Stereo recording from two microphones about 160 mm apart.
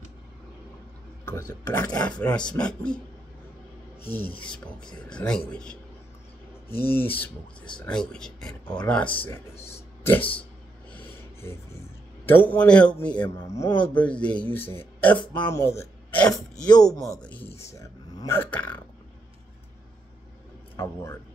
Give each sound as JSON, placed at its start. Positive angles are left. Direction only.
{"t": 1.5, "sound": "speech", "side_deg": 10}
{"t": 4.0, "sound": "speech", "side_deg": 10}
{"t": 10.9, "sound": "snort", "side_deg": 10}
{"t": 12.3, "sound": "speech", "side_deg": 10}
{"t": 16.7, "sound": "speech", "side_deg": 25}
{"t": 17.2, "sound": "speech", "side_deg": 10}
{"t": 20.7, "sound": "speech", "side_deg": 15}